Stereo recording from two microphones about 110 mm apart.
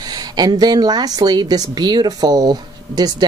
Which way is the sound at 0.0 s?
35° right (ahead or behind).